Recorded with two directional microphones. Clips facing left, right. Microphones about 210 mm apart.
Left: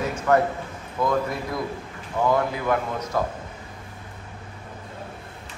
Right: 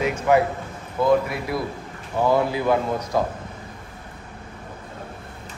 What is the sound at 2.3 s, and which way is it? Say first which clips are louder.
Speech: right 3 dB; 15° right (ahead or behind).